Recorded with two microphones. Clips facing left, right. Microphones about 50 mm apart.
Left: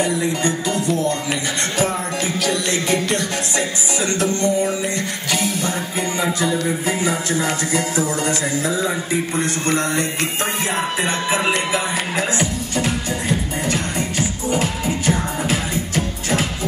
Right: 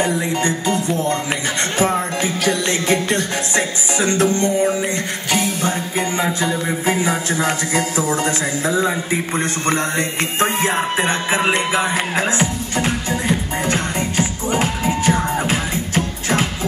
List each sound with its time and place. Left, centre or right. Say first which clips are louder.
0.0 s music: right 1 dB; right